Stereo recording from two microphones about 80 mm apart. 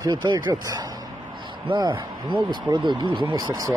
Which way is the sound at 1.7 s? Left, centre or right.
Right.